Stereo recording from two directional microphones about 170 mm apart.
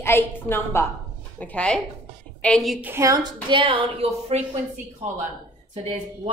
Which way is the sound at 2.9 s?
20° right (ahead or behind).